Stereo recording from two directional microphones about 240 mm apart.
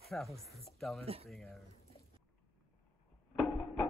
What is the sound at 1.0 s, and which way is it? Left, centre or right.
Speech, right.